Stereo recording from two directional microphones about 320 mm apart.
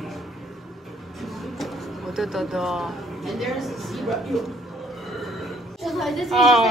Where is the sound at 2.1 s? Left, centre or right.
Centre.